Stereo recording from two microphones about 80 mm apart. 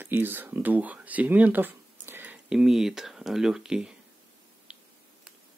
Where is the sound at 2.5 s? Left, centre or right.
Centre.